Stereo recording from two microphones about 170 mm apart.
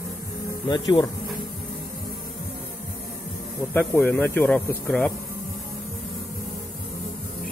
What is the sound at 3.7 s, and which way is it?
Speech, 10° left (ahead or behind).